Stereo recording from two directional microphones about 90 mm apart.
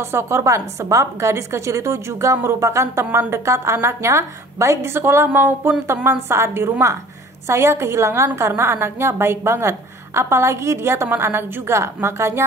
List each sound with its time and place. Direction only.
0.0 s a woman's voice: 30° right (ahead or behind)